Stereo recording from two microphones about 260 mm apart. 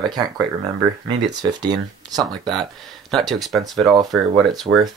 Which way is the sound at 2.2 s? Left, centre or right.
Centre.